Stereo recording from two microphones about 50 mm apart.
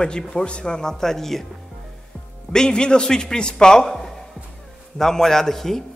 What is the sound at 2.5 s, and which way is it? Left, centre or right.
A man's voice, centre.